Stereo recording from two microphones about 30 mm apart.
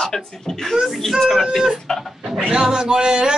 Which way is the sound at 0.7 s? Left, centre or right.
Centre.